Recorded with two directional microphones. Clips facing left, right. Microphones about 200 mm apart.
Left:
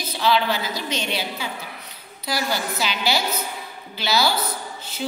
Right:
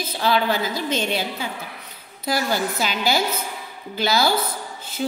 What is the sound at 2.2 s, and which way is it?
A woman's voice, 50° right (ahead or behind).